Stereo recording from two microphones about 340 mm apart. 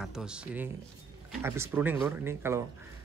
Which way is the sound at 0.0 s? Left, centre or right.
Centre.